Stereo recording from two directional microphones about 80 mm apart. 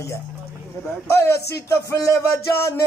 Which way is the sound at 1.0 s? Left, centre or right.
Left.